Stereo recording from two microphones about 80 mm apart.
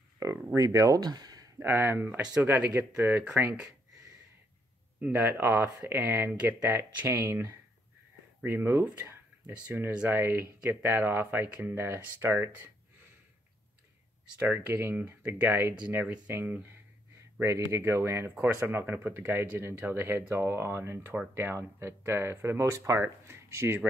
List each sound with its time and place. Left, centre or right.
0.2 s a sound: right
0.6 s speech: right
1.0 s a sound: right
1.6 s speech: right
5.0 s speech: right
8.5 s speech: right
10.0 s speech: right
14.4 s speech: right
17.4 s speech: right